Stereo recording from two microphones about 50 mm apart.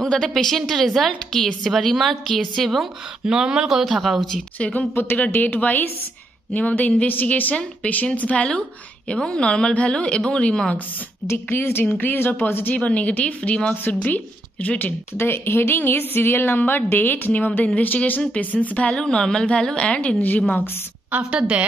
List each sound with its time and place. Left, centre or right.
0.1 s a woman's voice: centre
3.3 s a woman's voice: centre
4.6 s a woman's voice: left
4.9 s speech: left
5.3 s a woman's voice: left
11.3 s a woman's voice: left
12.7 s a woman's voice: left
13.8 s a woman's voice: left
15.1 s a woman's voice: left
18.9 s a woman's voice: centre
20.2 s a woman's voice: left
21.1 s a woman's voice: right